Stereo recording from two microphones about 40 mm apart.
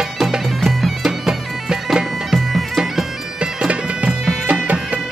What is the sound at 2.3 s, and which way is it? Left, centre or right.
Bagpipes, centre.